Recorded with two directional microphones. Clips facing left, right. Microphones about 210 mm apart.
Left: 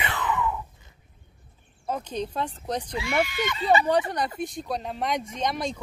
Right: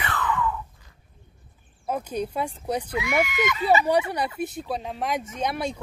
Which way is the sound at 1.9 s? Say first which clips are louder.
Right 2 dB; 10° right (ahead or behind).